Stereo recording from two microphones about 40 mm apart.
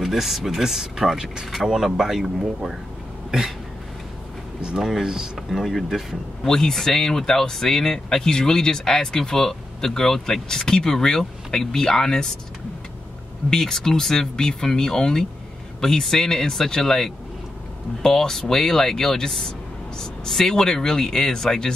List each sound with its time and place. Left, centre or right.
0.0 s speech: centre
3.3 s cough: centre
4.6 s a sound: right
4.8 s speech: centre
5.6 s speech: centre
6.4 s speech: centre
13.5 s speech: centre